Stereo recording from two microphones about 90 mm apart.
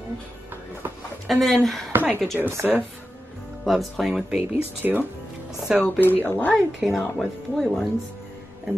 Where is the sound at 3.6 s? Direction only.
Centre (ahead or behind).